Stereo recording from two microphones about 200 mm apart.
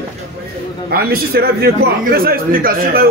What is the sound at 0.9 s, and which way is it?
A man's voice, 50° right (ahead or behind).